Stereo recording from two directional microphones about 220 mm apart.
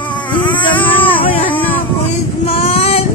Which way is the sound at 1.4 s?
10° left (ahead or behind).